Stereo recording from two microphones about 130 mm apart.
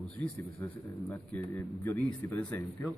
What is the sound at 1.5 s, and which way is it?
Speech, 15° left (ahead or behind).